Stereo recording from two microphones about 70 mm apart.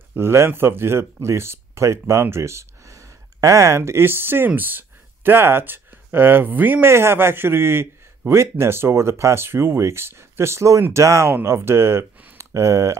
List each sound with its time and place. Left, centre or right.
0.1 s speech: right